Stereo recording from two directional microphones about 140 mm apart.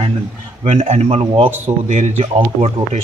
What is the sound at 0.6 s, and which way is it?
Speech, 45° right (ahead or behind).